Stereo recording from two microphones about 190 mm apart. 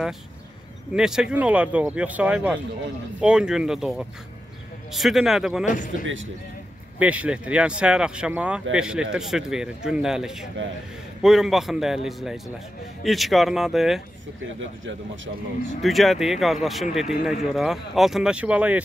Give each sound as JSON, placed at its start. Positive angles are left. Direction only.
{"t": 0.9, "sound": "speech", "side_deg": -5}
{"t": 5.7, "sound": "speech", "side_deg": 40}
{"t": 7.0, "sound": "speech", "side_deg": -5}
{"t": 15.8, "sound": "speech", "side_deg": 0}